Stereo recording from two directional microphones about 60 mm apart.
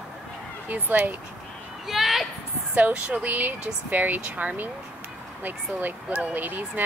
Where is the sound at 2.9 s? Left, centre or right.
Right.